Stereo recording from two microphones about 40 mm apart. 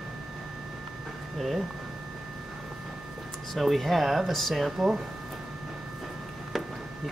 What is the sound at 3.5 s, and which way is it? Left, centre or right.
Speech, centre.